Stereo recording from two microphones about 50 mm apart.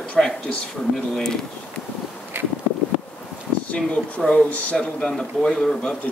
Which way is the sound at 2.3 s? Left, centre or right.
Right.